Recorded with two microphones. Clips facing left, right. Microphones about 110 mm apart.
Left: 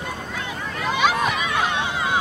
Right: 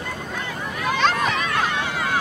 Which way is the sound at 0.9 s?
10° left (ahead or behind).